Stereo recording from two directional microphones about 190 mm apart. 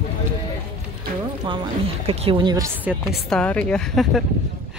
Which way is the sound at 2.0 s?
30° right (ahead or behind).